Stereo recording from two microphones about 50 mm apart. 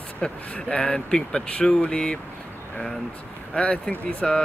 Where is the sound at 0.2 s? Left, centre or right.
Centre.